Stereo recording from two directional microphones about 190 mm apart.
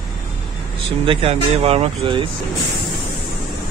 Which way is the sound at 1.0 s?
30° right (ahead or behind).